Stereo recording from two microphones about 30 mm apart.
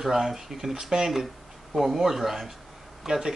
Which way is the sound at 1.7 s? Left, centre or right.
Centre.